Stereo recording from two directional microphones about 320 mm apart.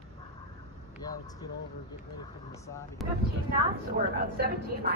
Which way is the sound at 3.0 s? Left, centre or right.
Centre.